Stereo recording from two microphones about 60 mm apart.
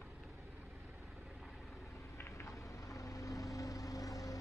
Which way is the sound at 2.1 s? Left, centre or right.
Left.